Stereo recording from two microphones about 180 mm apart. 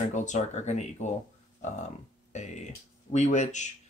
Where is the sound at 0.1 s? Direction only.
40° left (ahead or behind).